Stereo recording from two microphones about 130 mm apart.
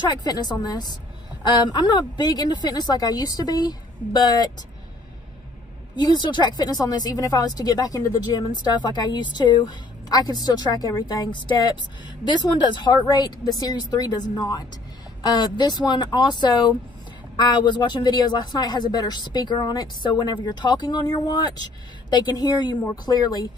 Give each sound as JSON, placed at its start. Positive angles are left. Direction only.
{"t": 0.2, "sound": "speech", "side_deg": 30}
{"t": 5.9, "sound": "speech", "side_deg": 35}